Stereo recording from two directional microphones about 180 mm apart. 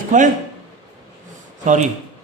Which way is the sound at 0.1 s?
45° right (ahead or behind).